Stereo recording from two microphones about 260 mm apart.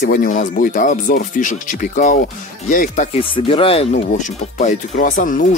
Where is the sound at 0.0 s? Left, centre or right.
Left.